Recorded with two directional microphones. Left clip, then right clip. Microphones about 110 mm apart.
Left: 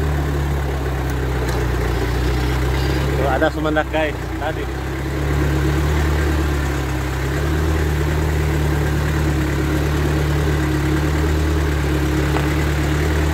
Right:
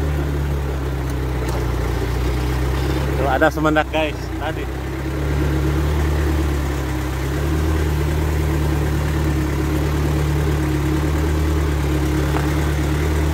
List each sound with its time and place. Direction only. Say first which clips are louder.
3.3 s speech: right 3 dB; 90° right; by 4.1 s 70° right (ahead or behind)